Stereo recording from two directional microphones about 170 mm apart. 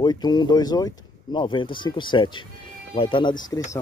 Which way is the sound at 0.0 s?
25° left (ahead or behind).